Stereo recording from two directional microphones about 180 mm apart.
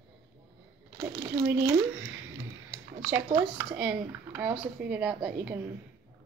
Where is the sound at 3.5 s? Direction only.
10° right (ahead or behind).